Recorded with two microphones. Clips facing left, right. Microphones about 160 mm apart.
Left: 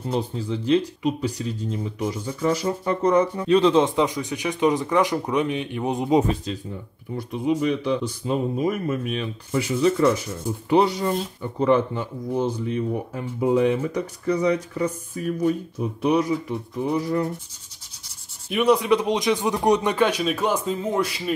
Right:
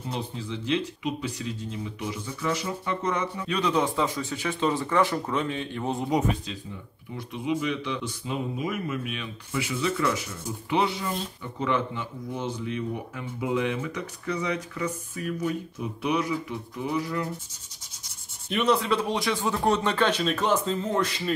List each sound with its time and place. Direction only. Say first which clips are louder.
0.1 s speech: left 8 dB; 40° left (ahead or behind)
7.2 s speech: left 5 dB; 40° left (ahead or behind)
18.5 s speech: left 5 dB; 10° left (ahead or behind)